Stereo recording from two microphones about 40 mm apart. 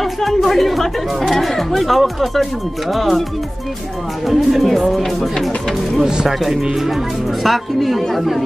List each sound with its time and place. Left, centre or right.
0.0 s speech: centre
4.3 s speech: centre
6.0 s speech: centre